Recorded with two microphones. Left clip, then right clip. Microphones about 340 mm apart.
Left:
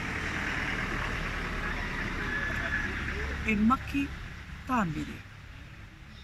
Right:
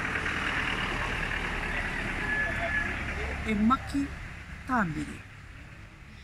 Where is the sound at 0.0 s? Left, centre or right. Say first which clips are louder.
Right 3 dB; right.